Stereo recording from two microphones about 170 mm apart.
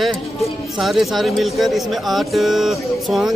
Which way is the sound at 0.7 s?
Centre (ahead or behind).